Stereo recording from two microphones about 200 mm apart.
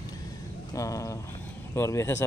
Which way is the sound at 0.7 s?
15° left (ahead or behind).